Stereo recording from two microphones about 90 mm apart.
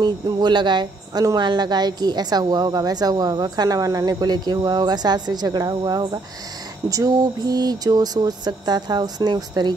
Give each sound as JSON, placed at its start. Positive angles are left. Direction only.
{"t": 0.0, "sound": "speech", "side_deg": -55}